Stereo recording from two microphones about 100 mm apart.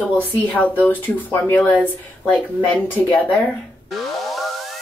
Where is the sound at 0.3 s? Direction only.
15° left (ahead or behind).